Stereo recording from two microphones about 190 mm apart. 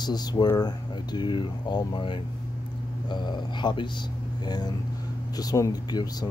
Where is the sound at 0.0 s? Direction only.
20° left (ahead or behind).